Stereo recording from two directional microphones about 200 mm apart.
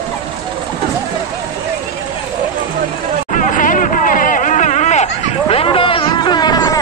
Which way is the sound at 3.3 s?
40° left (ahead or behind).